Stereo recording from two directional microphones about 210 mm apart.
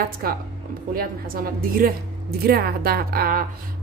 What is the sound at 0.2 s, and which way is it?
A woman's voice, 45° right (ahead or behind).